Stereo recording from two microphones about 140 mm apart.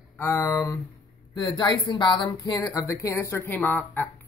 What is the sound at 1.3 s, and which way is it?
Speech, 30° left (ahead or behind).